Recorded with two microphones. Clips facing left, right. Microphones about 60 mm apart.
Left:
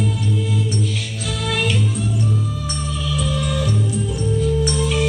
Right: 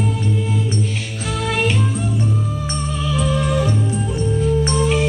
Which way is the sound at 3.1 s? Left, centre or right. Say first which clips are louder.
Right 4 dB; right.